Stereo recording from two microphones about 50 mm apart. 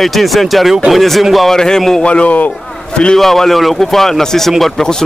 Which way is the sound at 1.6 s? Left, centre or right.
Centre.